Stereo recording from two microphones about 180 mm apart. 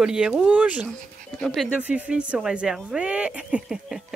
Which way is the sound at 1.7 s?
10° right (ahead or behind).